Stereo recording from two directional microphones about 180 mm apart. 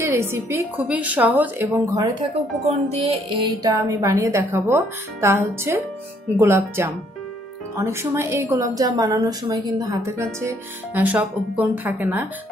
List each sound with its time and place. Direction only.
0.1 s a woman's voice: 15° right (ahead or behind)
2.9 s a woman's voice: 30° right (ahead or behind); by 12.3 s 10° right (ahead or behind)